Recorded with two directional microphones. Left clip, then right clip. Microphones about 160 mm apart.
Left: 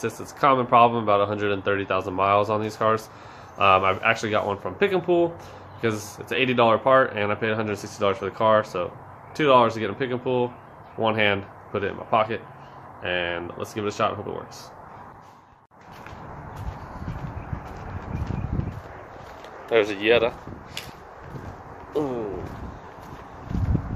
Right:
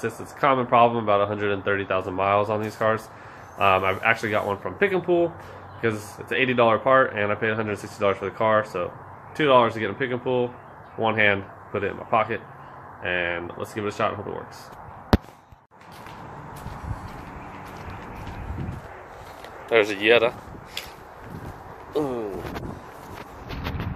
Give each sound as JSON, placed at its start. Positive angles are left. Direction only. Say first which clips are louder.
{"t": 0.0, "sound": "speech", "louder": "left 1 dB", "side_deg": 20}
{"t": 19.7, "sound": "speech", "louder": "right 1 dB", "side_deg": 5}
{"t": 21.9, "sound": "speech", "louder": "even", "side_deg": 0}